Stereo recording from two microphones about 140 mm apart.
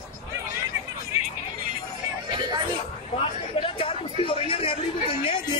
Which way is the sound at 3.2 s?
40° left (ahead or behind).